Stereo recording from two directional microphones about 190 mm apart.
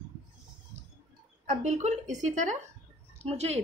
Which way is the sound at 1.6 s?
35° right (ahead or behind).